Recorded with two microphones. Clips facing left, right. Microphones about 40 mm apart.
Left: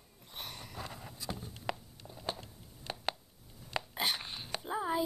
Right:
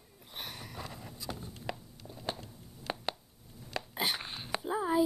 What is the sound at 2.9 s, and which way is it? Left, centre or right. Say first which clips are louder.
Chopping: right 5 dB; right.